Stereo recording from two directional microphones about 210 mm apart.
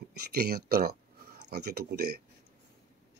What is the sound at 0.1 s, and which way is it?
Speech, 50° right (ahead or behind).